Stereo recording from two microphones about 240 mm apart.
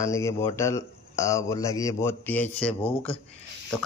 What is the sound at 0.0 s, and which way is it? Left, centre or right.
Speech, centre.